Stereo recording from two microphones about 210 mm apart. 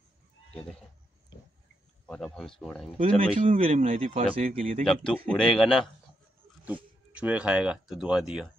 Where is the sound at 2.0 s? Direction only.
5° left (ahead or behind).